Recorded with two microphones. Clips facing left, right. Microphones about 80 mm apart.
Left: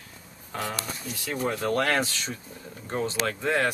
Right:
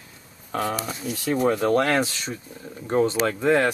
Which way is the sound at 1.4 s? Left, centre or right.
Right.